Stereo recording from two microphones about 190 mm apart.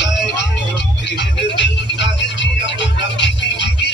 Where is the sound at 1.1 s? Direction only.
65° left (ahead or behind).